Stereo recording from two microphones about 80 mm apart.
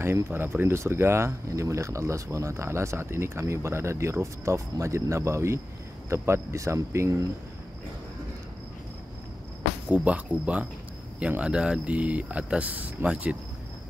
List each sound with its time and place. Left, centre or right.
0.0 s speech: right
9.8 s speech: centre